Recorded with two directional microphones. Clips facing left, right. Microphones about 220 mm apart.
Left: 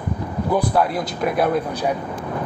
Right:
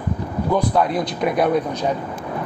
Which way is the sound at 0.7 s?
5° left (ahead or behind).